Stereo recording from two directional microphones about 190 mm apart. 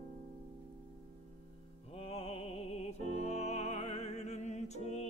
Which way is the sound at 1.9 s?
30° left (ahead or behind).